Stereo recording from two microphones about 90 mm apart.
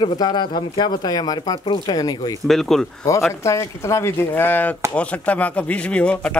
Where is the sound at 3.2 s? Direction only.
30° left (ahead or behind).